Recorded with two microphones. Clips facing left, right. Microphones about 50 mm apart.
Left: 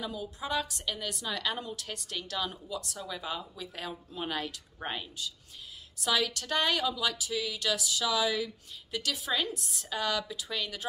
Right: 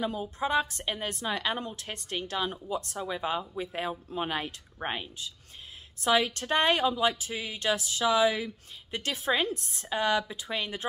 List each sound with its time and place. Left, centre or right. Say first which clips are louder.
0.0 s a woman's voice: right 6 dB; right